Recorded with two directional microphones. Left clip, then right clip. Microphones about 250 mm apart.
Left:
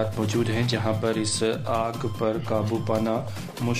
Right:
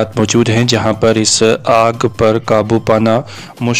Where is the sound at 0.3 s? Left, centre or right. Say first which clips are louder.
Right 14 dB; right.